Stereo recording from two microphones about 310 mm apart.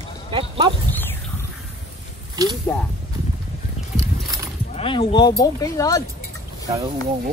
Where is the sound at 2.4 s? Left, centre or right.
Centre.